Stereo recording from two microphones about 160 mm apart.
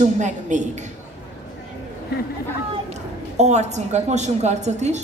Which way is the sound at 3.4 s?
45° right (ahead or behind).